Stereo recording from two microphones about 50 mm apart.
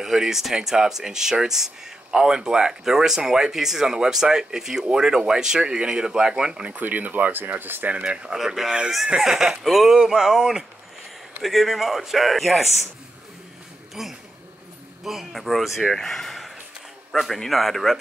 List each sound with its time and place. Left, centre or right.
0.0 s speech: centre
6.7 s speech: right
7.9 s speech: right; by 12.6 s centre
14.0 s speech: centre
16.0 s a sound: centre
17.1 s speech: centre